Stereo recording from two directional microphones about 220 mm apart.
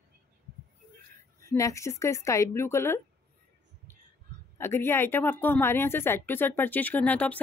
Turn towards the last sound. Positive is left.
turn(degrees=5)  # may be behind; listen again after turning